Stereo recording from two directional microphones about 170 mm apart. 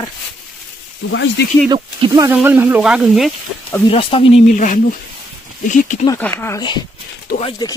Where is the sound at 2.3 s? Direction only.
10° right (ahead or behind).